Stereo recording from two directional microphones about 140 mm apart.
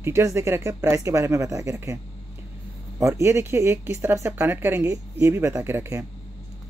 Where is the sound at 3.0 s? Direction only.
20° right (ahead or behind).